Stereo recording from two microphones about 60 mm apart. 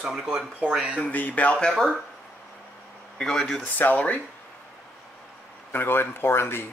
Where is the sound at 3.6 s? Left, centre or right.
Left.